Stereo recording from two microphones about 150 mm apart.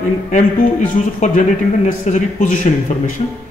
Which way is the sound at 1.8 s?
55° left (ahead or behind).